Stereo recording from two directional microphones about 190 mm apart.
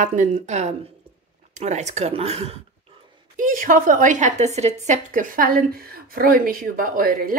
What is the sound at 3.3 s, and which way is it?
A woman's voice, 45° right (ahead or behind).